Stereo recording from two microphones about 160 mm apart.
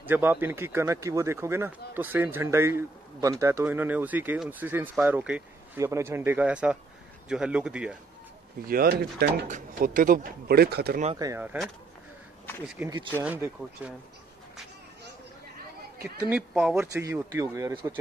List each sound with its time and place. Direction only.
0.0 s speech: 10° right (ahead or behind)
8.6 s speech: 65° right (ahead or behind)
9.5 s speech: 60° right (ahead or behind); by 11.0 s 75° right (ahead or behind)
11.1 s speech: 20° right (ahead or behind)
12.6 s speech: 10° right (ahead or behind)
16.0 s speech: 10° right (ahead or behind)
16.9 s speech: 15° right (ahead or behind)